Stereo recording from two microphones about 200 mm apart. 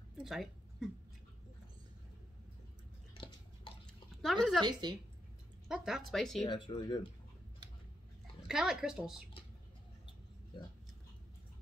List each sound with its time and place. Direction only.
0.2 s a sound: centre (ahead or behind)
4.2 s speech: centre (ahead or behind)
4.8 s speech: 20° right (ahead or behind)
5.7 s speech: centre (ahead or behind)
6.4 s speech: 25° left (ahead or behind)
8.5 s speech: centre (ahead or behind)